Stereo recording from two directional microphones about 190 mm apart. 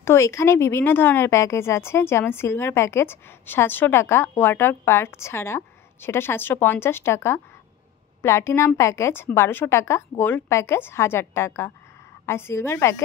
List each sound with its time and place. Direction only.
0.0 s speech: 15° left (ahead or behind)